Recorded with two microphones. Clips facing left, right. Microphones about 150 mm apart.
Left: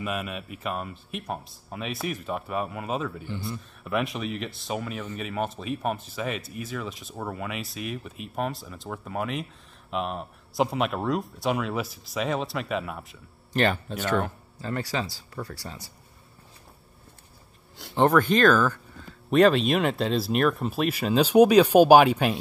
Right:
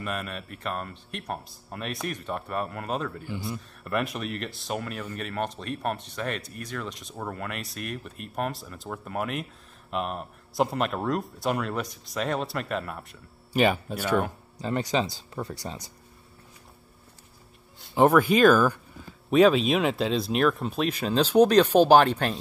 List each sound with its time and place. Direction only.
0.0 s speech: 5° left (ahead or behind)
13.5 s speech: 10° right (ahead or behind)
14.6 s speech: 20° right (ahead or behind)
17.9 s speech: 10° right (ahead or behind); by 22.4 s 10° left (ahead or behind)